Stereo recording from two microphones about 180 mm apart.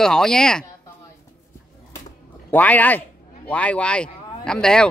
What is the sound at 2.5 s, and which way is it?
Speech, 10° left (ahead or behind).